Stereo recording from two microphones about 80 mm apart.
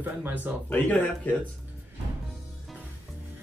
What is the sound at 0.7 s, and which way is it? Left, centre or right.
Speech, left.